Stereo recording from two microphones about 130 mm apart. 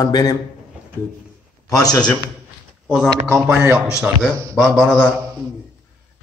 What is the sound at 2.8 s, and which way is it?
Speech, centre (ahead or behind).